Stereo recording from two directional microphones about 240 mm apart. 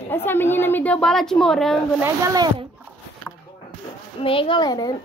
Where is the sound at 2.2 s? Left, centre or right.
Centre.